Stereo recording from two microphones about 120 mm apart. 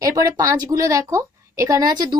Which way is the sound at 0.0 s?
25° right (ahead or behind).